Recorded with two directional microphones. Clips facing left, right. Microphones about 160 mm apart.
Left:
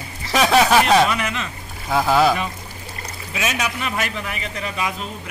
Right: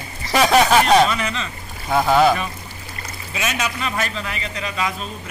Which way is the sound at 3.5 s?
10° left (ahead or behind).